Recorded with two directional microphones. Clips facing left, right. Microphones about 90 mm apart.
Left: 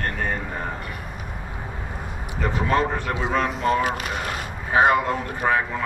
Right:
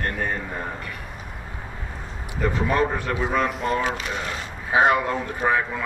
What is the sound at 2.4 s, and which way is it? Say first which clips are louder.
Speech: even; 20° left (ahead or behind).